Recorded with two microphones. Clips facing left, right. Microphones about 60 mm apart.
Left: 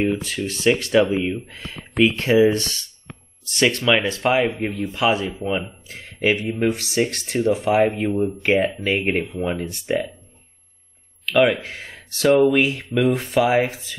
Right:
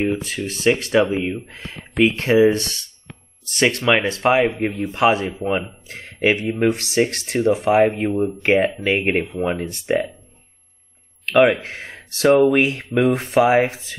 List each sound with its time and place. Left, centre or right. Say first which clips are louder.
0.5 s speech: right 1 dB; right
11.3 s speech: right 3 dB; right